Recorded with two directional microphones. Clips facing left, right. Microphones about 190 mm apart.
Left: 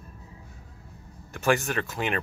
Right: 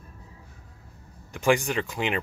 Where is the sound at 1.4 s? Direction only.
15° right (ahead or behind).